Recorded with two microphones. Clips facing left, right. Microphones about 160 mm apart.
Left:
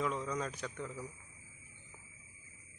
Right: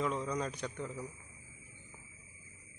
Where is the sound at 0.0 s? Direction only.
Centre (ahead or behind).